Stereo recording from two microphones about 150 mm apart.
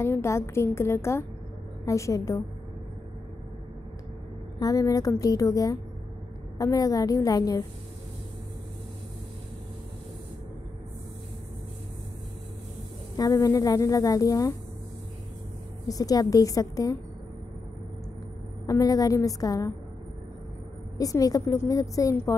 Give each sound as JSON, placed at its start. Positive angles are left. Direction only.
{"t": 0.0, "sound": "a woman's voice", "side_deg": 20}
{"t": 4.6, "sound": "a woman's voice", "side_deg": 25}
{"t": 13.1, "sound": "a woman's voice", "side_deg": 25}
{"t": 15.9, "sound": "a woman's voice", "side_deg": 25}
{"t": 18.7, "sound": "a woman's voice", "side_deg": 25}
{"t": 21.0, "sound": "a woman's voice", "side_deg": 25}